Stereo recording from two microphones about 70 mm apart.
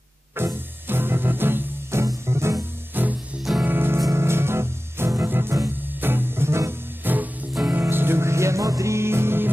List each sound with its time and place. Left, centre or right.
0.4 s music: right
2.9 s music: right
7.0 s music: right